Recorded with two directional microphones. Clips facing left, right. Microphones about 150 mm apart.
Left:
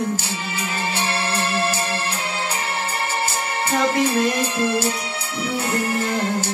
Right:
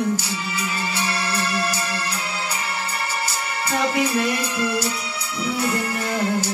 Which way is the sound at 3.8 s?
25° left (ahead or behind).